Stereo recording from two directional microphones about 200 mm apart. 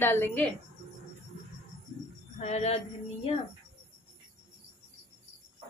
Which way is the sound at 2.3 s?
35° left (ahead or behind).